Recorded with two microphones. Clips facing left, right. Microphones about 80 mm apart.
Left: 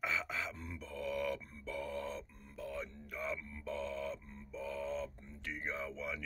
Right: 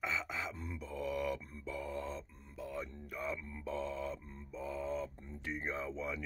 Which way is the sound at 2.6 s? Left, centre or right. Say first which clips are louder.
Right 1 dB; centre.